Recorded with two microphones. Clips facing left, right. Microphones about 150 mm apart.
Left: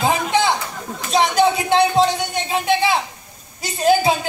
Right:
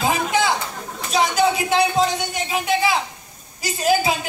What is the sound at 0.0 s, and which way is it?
Chatter, 30° left (ahead or behind).